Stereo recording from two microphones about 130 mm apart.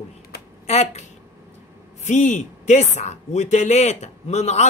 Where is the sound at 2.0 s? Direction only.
70° left (ahead or behind).